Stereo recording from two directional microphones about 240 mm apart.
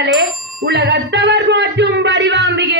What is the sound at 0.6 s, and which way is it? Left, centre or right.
Music, right.